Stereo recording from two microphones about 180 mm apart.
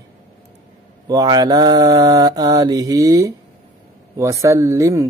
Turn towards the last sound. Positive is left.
turn(degrees=-15)  # may be behind; listen again after turning